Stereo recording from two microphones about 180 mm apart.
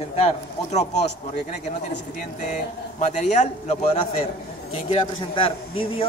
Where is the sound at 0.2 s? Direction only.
40° left (ahead or behind).